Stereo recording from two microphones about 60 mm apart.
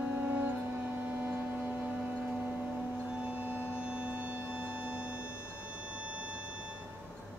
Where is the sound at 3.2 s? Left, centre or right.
Right.